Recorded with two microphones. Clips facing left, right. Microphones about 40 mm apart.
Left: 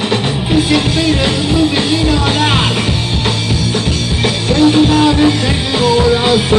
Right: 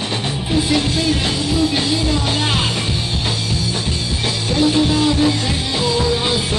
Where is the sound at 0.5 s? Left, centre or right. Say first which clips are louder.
Left 5 dB; left.